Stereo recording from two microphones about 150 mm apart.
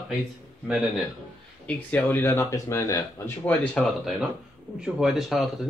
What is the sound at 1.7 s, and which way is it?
Speech, 10° left (ahead or behind).